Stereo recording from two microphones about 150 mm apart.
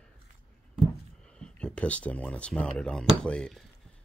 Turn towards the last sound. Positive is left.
turn(degrees=5)  # may be behind; listen again after turning